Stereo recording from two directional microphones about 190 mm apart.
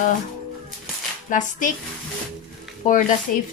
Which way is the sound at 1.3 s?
40° left (ahead or behind).